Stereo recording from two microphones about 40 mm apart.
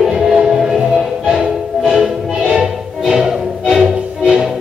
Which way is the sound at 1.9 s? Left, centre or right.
Centre.